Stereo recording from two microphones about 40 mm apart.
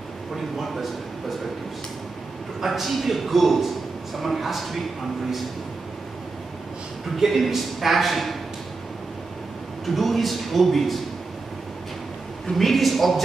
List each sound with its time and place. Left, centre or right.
2.6 s a man's voice: centre
7.2 s a man's voice: centre
9.8 s a man's voice: centre
12.4 s a man's voice: centre